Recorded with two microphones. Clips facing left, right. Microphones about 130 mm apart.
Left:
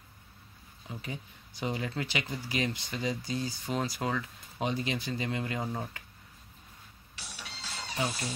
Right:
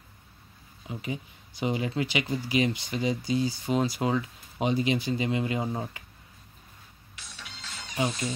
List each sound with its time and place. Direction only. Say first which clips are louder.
0.8 s speech: right 6 dB; 15° right (ahead or behind)
7.7 s music: left 3 dB; 35° left (ahead or behind)